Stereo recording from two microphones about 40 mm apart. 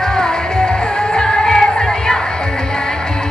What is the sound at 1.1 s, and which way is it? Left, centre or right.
Music, centre.